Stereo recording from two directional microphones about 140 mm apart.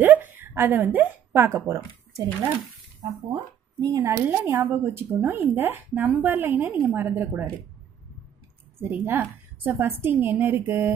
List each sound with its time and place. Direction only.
0.0 s speech: 15° right (ahead or behind)
3.8 s speech: 20° right (ahead or behind)
8.7 s speech: 15° right (ahead or behind)